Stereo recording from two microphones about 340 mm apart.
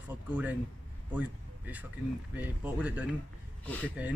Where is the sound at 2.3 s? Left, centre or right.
Centre.